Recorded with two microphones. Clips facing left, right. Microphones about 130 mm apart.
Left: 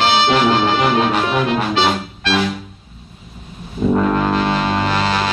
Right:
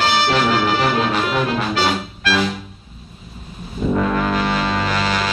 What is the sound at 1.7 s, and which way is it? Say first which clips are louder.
Music: left 2 dB; 25° left (ahead or behind).